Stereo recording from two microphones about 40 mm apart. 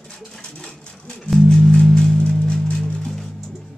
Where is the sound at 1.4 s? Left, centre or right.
Centre.